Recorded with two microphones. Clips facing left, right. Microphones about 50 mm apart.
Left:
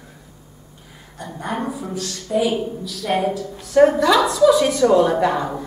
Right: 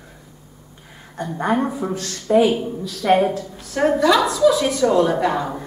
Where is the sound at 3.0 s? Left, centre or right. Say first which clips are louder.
Right 5 dB; right.